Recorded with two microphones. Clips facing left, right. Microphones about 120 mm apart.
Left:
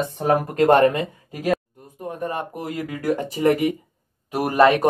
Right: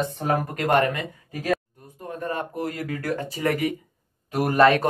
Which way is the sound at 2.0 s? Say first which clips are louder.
Left 2 dB; 15° left (ahead or behind).